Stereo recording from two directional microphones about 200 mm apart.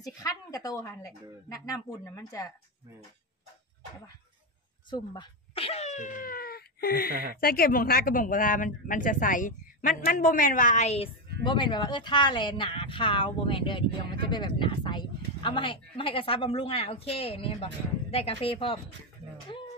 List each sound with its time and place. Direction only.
0.0 s a woman's voice: 20° left (ahead or behind)
4.8 s speech: 20° left (ahead or behind)
11.4 s speech: 25° left (ahead or behind)